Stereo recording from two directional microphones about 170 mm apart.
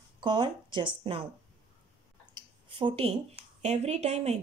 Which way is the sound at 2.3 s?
30° right (ahead or behind).